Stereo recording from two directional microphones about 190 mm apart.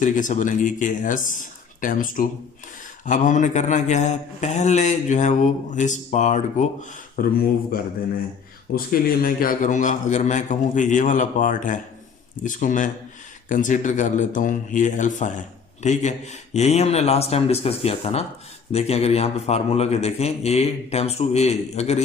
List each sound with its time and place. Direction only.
0.0 s speech: 45° left (ahead or behind)
8.7 s speech: 50° left (ahead or behind); by 22.0 s 35° left (ahead or behind)